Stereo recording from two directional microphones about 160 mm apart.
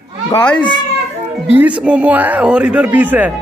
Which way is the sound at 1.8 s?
10° right (ahead or behind).